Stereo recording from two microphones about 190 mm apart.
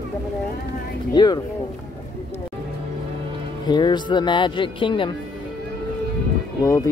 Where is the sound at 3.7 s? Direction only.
25° left (ahead or behind).